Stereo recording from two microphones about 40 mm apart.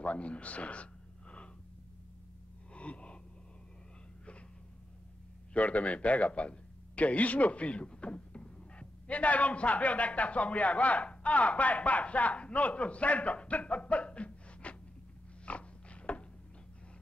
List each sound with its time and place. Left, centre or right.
0.0 s a man's voice: left
2.7 s gasp: left
5.5 s a man's voice: left
9.0 s a man's voice: left
15.4 s a sound: left